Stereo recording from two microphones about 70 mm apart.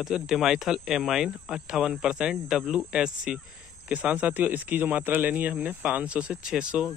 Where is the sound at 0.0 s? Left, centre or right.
Centre.